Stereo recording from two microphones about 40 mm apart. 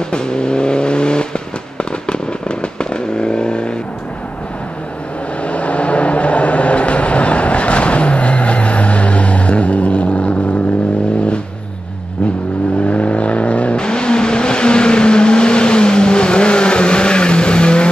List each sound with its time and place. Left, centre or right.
0.1 s vehicle: left
5.4 s vehicle: left
12.8 s vehicle: left